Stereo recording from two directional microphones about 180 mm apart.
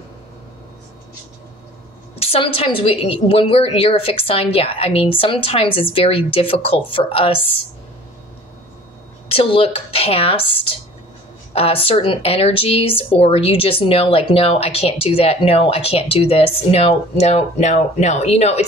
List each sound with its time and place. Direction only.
2.1 s speech: 30° left (ahead or behind)
9.3 s speech: 30° left (ahead or behind)